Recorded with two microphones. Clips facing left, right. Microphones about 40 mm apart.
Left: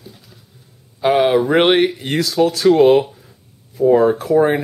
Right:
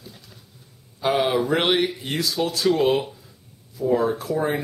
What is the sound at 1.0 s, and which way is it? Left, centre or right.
Speech, centre.